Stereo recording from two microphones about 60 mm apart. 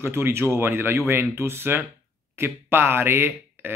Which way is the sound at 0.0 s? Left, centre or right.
Right.